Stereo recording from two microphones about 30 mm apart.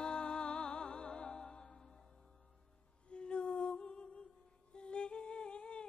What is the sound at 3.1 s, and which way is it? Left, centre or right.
Music, left.